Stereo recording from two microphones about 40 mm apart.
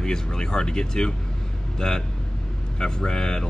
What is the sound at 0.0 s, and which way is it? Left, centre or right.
Speech, centre.